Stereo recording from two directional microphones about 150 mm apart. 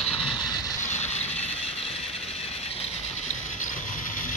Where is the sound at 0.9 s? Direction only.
50° left (ahead or behind).